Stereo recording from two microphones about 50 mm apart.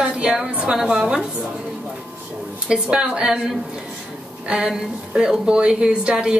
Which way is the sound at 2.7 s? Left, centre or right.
Centre.